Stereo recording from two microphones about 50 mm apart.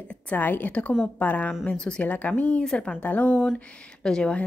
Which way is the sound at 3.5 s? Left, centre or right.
Centre.